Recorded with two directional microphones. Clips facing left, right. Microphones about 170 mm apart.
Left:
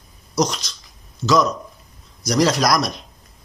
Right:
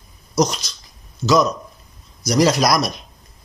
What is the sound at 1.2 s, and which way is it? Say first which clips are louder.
A man's voice: right 1 dB; centre (ahead or behind).